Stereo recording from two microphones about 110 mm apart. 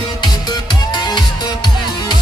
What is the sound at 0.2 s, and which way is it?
Music, 40° left (ahead or behind).